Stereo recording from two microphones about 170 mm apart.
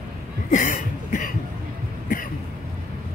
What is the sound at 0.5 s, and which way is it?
Cough, 45° left (ahead or behind).